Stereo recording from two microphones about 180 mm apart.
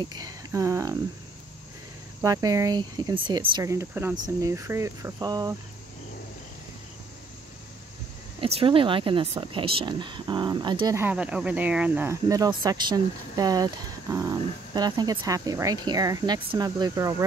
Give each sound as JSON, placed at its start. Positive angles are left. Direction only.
{"t": 0.0, "sound": "speech", "side_deg": -20}
{"t": 2.2, "sound": "speech", "side_deg": -20}
{"t": 8.4, "sound": "speech", "side_deg": -30}
{"t": 11.0, "sound": "speech", "side_deg": -10}